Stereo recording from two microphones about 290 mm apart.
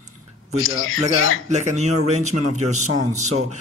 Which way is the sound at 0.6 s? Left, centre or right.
Left.